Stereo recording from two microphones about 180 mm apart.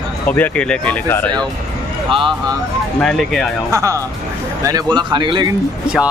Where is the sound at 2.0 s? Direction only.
30° right (ahead or behind).